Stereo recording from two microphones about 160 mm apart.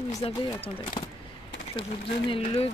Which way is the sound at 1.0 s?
35° left (ahead or behind).